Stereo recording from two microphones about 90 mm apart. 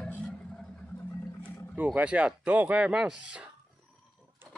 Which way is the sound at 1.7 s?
15° right (ahead or behind).